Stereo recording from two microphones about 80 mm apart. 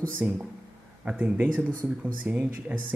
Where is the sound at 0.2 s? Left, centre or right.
Right.